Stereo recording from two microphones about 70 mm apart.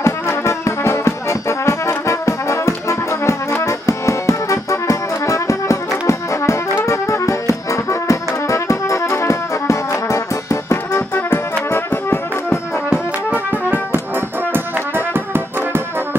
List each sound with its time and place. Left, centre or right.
0.0 s brass instrument: left
3.6 s music: left
11.1 s brass instrument: left
12.9 s music: right
14.5 s brass instrument: right